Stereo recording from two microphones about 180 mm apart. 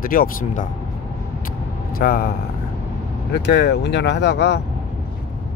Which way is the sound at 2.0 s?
55° left (ahead or behind).